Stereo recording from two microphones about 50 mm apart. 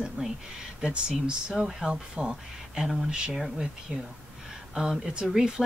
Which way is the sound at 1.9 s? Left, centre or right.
Right.